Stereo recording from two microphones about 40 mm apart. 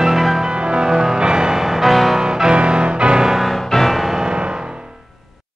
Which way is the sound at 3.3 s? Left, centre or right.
Centre.